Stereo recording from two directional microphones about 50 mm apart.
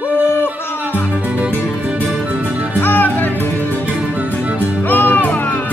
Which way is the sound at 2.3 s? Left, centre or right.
Right.